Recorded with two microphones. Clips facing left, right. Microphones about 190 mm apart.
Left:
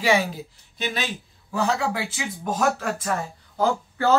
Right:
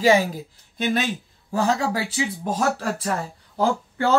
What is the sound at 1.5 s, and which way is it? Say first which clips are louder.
Speech: right 2 dB; 40° right (ahead or behind).